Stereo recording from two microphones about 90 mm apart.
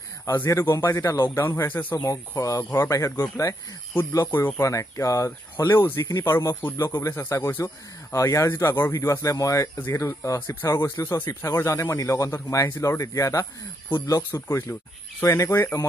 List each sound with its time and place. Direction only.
0.2 s a man's voice: 30° left (ahead or behind)
1.7 s a man's voice: 20° left (ahead or behind)
2.0 s speech: 40° left (ahead or behind)
5.8 s a man's voice: 25° left (ahead or behind)
9.8 s a man's voice: 25° left (ahead or behind)